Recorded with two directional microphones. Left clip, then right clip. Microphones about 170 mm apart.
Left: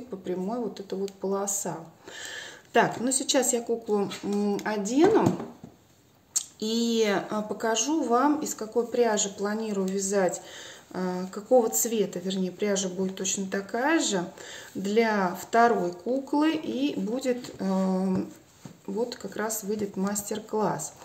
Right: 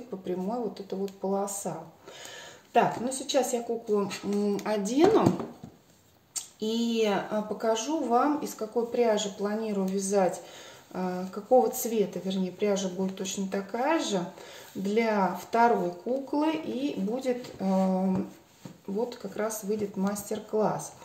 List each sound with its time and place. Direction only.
0.2 s speech: 30° left (ahead or behind)
2.7 s speech: 40° left (ahead or behind)
4.4 s speech: 15° left (ahead or behind)
6.3 s speech: 35° left (ahead or behind)